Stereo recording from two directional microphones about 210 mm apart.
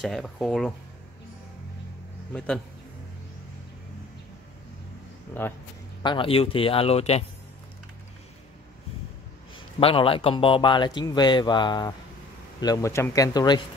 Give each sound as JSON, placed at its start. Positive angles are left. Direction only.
{"t": 0.0, "sound": "speech", "side_deg": 0}
{"t": 2.3, "sound": "speech", "side_deg": 5}
{"t": 5.4, "sound": "speech", "side_deg": 10}
{"t": 6.0, "sound": "speech", "side_deg": 25}
{"t": 9.8, "sound": "speech", "side_deg": 25}